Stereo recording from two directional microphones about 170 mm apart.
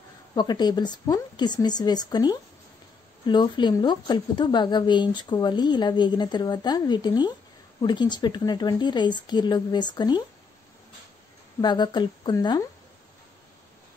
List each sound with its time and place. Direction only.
0.3 s a woman's voice: 25° left (ahead or behind)
11.6 s a woman's voice: 25° left (ahead or behind)